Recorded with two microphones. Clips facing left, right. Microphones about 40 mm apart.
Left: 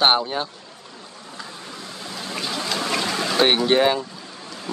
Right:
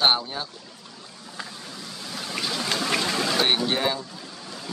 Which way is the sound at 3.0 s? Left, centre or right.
Centre.